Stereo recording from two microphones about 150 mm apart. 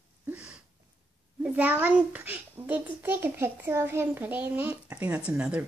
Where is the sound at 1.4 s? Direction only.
10° right (ahead or behind).